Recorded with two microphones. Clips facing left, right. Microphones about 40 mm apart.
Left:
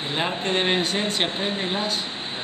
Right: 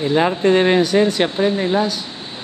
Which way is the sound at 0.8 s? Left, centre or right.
Left.